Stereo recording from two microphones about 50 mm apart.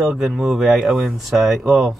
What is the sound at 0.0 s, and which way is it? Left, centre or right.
Speech, centre.